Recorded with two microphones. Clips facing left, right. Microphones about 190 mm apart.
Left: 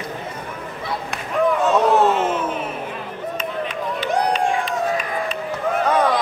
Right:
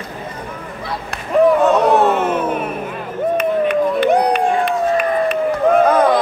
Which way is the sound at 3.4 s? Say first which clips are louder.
Right 11 dB; 60° right (ahead or behind).